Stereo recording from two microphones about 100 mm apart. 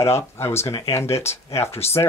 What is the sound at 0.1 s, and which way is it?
Speech, 25° left (ahead or behind).